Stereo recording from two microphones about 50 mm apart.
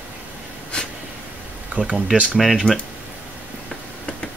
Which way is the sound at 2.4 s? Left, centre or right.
Centre.